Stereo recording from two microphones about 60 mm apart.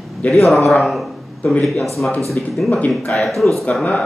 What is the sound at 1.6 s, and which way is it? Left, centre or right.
Speech, centre.